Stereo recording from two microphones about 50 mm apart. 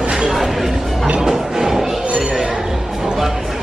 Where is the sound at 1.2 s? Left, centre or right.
Centre.